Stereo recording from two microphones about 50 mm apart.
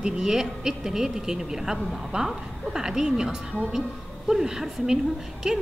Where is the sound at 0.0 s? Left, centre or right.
Centre.